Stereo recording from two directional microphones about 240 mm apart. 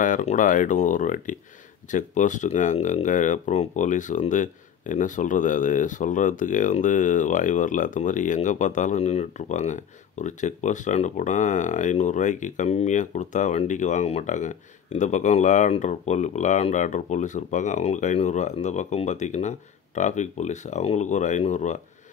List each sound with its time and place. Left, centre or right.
0.0 s speech: left